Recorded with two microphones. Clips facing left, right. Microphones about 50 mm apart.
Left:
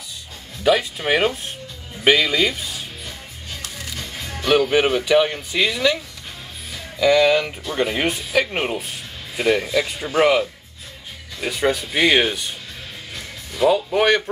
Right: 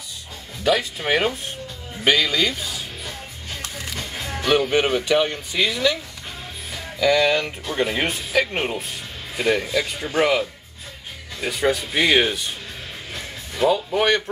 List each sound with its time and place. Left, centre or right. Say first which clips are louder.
0.7 s speech: left 2 dB; centre
3.6 s music: right 2 dB; right
4.5 s speech: left 2 dB; centre
7.0 s speech: left 3 dB; centre
13.7 s speech: left 2 dB; centre